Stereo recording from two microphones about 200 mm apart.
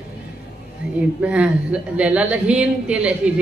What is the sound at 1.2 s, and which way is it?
A woman's voice, 5° right (ahead or behind).